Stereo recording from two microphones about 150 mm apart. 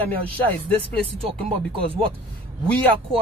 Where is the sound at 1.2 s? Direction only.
40° right (ahead or behind).